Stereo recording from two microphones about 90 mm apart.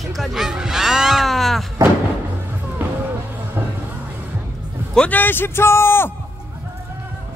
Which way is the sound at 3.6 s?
25° right (ahead or behind).